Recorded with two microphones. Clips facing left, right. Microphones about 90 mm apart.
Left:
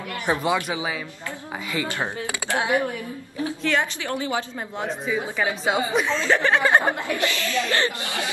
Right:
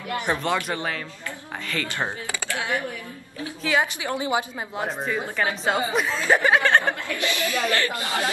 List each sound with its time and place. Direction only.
0.3 s speech: 5° left (ahead or behind)
3.6 s a woman's voice: 5° right (ahead or behind)
4.1 s a woman's voice: 20° right (ahead or behind)
4.7 s speech: centre (ahead or behind)
6.1 s a woman's voice: 10° right (ahead or behind)
6.6 s speech: 10° left (ahead or behind)
7.2 s a woman's voice: 15° right (ahead or behind)
7.7 s speech: 25° left (ahead or behind)